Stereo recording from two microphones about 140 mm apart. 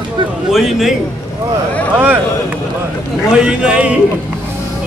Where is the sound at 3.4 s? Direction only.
5° right (ahead or behind).